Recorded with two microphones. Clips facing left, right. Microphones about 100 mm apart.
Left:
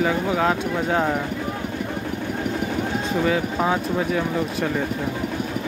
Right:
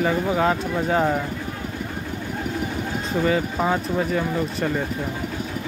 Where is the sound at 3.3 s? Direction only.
5° left (ahead or behind).